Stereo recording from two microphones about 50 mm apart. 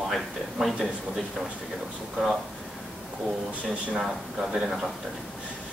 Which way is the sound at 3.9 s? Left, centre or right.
Centre.